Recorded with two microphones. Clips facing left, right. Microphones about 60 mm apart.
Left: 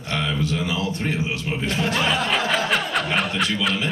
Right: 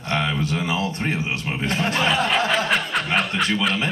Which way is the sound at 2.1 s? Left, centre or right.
Centre.